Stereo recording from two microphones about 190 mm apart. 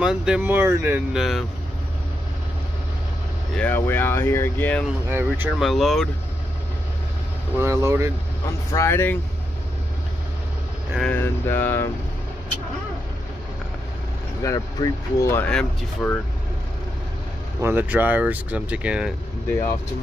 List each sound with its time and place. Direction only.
0.0 s speech: 5° right (ahead or behind)
3.5 s speech: 10° left (ahead or behind)
5.1 s speech: 10° right (ahead or behind)
5.7 s speech: centre (ahead or behind)
7.5 s speech: 15° right (ahead or behind)
8.7 s speech: 15° left (ahead or behind)
11.0 s speech: 10° left (ahead or behind)
14.4 s speech: 20° left (ahead or behind)
17.6 s speech: 10° right (ahead or behind)